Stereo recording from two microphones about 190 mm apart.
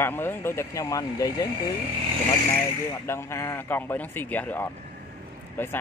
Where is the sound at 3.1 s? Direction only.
15° left (ahead or behind).